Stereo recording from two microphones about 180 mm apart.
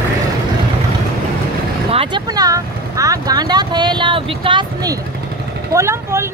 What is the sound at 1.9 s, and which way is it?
Vehicle, 30° right (ahead or behind).